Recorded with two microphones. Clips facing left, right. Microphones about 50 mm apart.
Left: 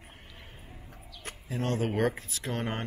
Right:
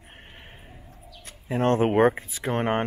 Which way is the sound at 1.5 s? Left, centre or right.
Right.